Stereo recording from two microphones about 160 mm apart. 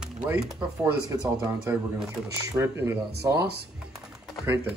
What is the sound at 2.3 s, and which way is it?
Speech, 20° right (ahead or behind).